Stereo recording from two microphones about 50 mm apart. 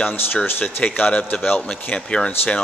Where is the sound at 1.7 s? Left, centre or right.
Centre.